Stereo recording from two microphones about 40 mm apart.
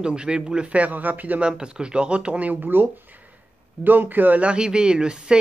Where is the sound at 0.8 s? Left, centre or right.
Right.